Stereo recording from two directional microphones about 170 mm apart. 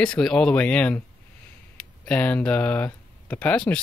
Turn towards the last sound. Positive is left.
turn(degrees=5)  # may be behind; listen again after turning